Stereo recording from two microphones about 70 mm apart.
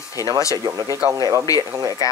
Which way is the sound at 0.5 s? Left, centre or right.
Right.